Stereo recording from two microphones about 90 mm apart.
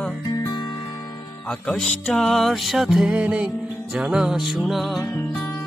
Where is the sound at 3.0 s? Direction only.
15° right (ahead or behind).